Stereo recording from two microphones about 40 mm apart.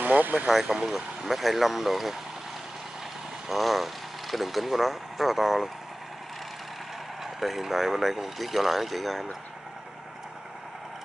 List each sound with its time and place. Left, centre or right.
0.0 s speech: right
0.8 s speech: centre
3.4 s speech: centre
7.2 s speech: centre